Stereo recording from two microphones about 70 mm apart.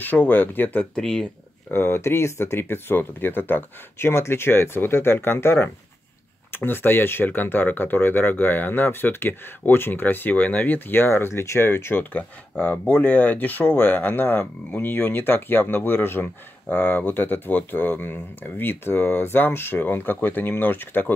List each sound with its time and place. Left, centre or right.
0.0 s speech: left
0.9 s speech: centre
1.7 s speech: left